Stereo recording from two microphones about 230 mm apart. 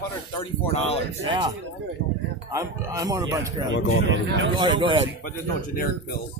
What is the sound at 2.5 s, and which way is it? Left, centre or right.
Speech, centre.